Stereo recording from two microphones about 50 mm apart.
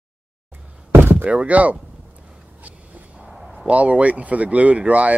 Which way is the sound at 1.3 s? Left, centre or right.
Right.